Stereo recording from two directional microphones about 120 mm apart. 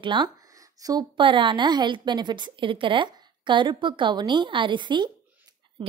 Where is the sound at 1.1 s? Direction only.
45° right (ahead or behind).